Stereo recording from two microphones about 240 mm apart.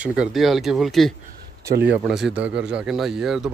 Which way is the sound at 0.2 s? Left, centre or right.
Centre.